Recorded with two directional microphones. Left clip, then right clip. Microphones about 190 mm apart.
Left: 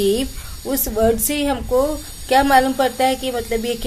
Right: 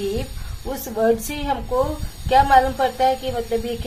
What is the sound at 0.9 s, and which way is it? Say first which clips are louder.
Speech: left 2 dB; 30° left (ahead or behind).